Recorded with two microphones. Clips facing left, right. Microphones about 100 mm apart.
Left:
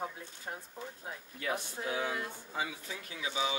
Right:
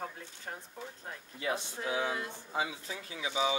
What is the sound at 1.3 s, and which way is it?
Speech, 20° right (ahead or behind).